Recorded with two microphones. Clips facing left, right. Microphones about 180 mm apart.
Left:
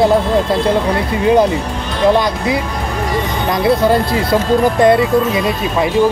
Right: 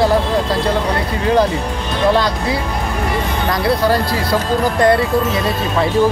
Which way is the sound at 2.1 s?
20° left (ahead or behind).